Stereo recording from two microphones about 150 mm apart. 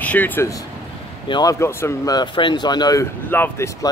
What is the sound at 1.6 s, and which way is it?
Speech, 15° left (ahead or behind).